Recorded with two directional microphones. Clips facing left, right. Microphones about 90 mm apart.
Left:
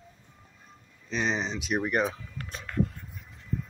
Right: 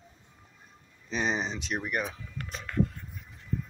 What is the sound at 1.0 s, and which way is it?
Speech, 10° right (ahead or behind).